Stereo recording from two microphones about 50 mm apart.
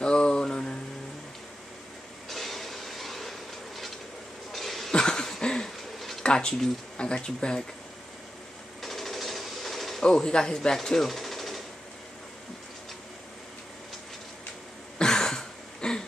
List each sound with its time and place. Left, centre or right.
0.0 s mantra: centre
2.2 s a sound: centre
4.5 s cough: centre
4.9 s cough: centre
6.2 s speech: centre
8.8 s a sound: centre
15.0 s throat clearing: centre